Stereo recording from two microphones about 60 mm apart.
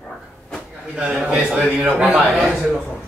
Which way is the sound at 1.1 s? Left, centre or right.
Centre.